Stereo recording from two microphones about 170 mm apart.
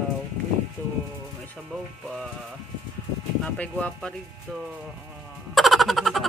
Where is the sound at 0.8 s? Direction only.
10° left (ahead or behind).